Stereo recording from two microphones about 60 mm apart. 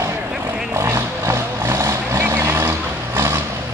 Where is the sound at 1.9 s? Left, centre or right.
Right.